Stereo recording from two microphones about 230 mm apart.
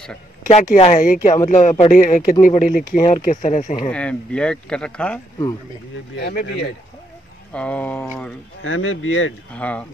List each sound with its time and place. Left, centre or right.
0.5 s speech: left
3.9 s speech: centre
6.1 s speech: left
7.5 s speech: centre
8.6 s speech: left
9.5 s speech: centre